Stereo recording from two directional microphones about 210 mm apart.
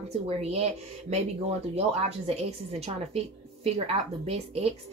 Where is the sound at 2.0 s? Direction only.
30° right (ahead or behind).